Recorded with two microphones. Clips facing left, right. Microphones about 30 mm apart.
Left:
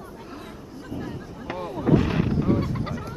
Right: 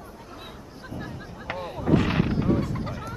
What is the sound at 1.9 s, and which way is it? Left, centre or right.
Artillery fire, centre.